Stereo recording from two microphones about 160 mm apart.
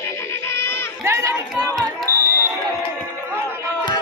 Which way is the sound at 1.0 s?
15° right (ahead or behind).